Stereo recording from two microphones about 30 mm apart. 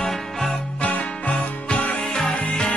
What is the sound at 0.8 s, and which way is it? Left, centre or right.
Music, left.